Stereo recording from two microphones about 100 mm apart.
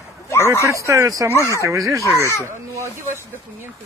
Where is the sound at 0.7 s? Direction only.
30° right (ahead or behind).